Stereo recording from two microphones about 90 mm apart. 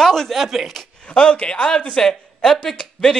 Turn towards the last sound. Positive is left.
turn(degrees=5)  # may be behind; listen again after turning